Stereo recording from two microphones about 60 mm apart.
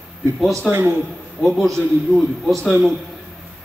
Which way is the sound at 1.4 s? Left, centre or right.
Centre.